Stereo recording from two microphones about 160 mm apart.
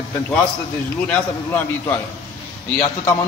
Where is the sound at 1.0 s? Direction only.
10° left (ahead or behind).